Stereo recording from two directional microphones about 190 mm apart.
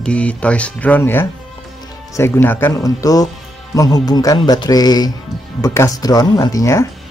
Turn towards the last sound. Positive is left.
turn(degrees=15)  # may be behind; listen again after turning